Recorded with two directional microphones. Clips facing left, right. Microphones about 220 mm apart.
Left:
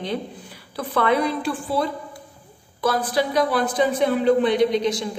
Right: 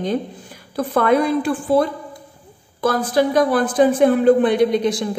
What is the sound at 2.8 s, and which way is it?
A woman's voice, 50° right (ahead or behind).